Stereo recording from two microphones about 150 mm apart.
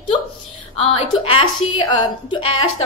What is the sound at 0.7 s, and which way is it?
A woman's voice, 35° left (ahead or behind).